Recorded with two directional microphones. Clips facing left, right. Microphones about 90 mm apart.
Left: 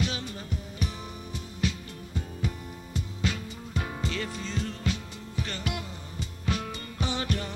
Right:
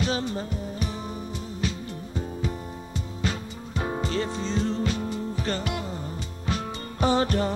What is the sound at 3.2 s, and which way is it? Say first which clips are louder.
Music: right 2 dB; 35° right (ahead or behind).